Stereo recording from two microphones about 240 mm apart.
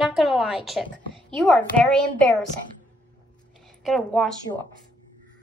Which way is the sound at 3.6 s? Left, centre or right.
Centre.